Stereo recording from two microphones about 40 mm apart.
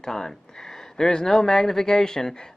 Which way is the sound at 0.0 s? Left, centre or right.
Centre.